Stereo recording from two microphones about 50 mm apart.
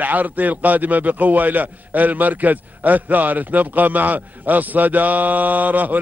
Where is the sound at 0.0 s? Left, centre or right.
Right.